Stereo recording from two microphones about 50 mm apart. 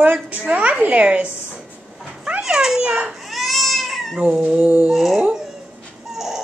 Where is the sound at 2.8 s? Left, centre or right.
Right.